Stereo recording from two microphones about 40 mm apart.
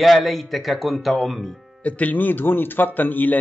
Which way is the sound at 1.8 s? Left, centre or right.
Left.